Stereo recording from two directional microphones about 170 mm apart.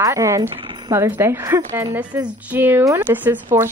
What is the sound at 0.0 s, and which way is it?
Speech, 20° right (ahead or behind).